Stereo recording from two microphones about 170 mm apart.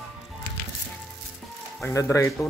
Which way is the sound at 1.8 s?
20° left (ahead or behind).